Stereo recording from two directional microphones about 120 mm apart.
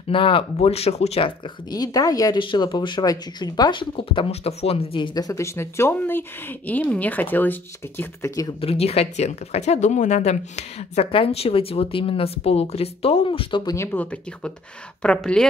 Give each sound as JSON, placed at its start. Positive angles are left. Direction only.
{"t": 0.1, "sound": "speech", "side_deg": 45}
{"t": 1.7, "sound": "speech", "side_deg": 30}
{"t": 3.9, "sound": "speech", "side_deg": 45}
{"t": 8.5, "sound": "speech", "side_deg": 55}
{"t": 13.8, "sound": "speech", "side_deg": 15}